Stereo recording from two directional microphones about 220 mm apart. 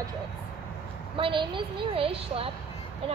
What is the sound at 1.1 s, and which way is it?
A woman's voice, 25° right (ahead or behind).